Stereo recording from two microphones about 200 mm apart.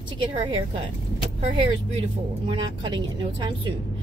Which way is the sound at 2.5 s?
25° right (ahead or behind).